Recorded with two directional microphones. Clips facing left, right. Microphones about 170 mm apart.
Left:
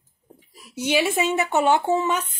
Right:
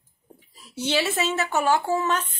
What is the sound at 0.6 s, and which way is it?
Speech, 10° left (ahead or behind).